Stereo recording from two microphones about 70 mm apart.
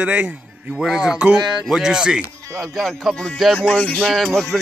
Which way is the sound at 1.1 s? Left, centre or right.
Centre.